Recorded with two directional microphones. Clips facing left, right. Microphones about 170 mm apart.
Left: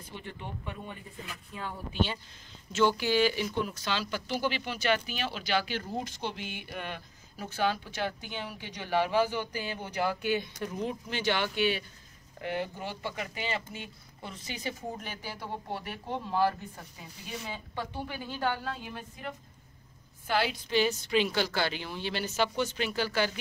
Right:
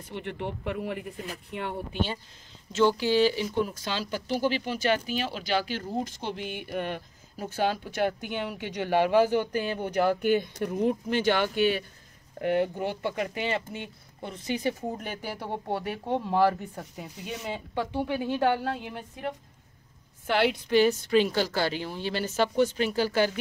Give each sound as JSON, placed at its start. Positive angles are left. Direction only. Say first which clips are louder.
{"t": 0.1, "sound": "speech", "louder": "right 8 dB", "side_deg": -70}
{"t": 1.5, "sound": "speech", "louder": "right 5 dB", "side_deg": -70}
{"t": 2.7, "sound": "speech", "louder": "right 3 dB", "side_deg": -30}
{"t": 20.2, "sound": "speech", "louder": "right 5 dB", "side_deg": -65}